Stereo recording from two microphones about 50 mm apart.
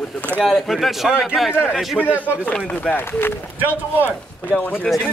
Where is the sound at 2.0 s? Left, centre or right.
Centre.